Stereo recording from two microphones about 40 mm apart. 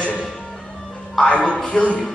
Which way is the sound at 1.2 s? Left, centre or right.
Left.